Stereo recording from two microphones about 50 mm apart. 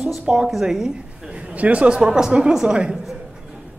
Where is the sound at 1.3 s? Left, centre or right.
Right.